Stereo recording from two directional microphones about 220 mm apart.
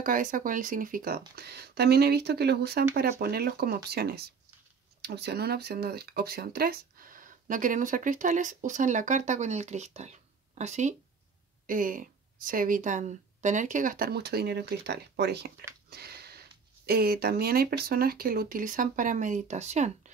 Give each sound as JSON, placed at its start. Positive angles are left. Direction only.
{"t": 0.0, "sound": "speech", "side_deg": -40}